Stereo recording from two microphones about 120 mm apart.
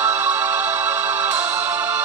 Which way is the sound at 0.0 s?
25° right (ahead or behind).